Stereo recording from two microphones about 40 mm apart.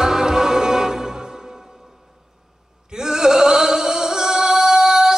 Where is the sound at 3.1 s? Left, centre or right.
Centre.